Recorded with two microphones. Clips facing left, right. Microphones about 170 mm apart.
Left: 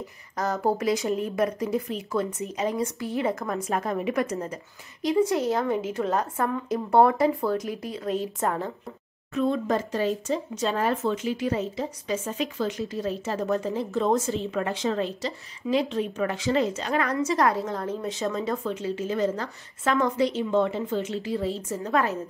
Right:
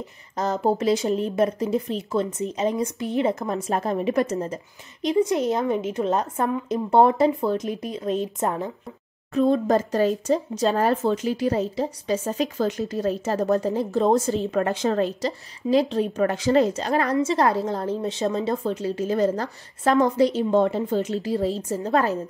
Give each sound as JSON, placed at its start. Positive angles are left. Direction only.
{"t": 0.4, "sound": "a woman's voice", "side_deg": -25}
{"t": 5.0, "sound": "a woman's voice", "side_deg": -20}
{"t": 9.3, "sound": "speech", "side_deg": -35}